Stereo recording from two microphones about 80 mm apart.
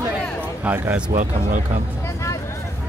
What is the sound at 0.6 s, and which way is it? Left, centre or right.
Speech, right.